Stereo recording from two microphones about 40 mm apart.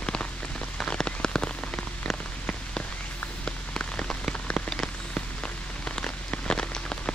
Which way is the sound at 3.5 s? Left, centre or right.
Centre.